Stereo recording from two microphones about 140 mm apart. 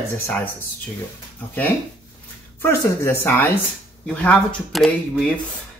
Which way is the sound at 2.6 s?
20° left (ahead or behind).